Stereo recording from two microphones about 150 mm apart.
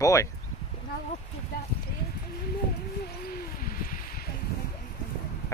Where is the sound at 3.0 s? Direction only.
90° left.